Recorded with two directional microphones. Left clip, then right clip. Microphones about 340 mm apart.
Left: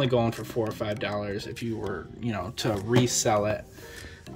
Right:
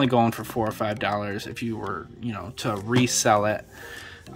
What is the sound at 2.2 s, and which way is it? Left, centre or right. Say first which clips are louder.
Speech: left 1 dB; centre.